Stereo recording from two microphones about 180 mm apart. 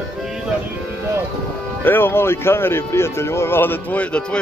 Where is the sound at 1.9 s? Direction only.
10° left (ahead or behind).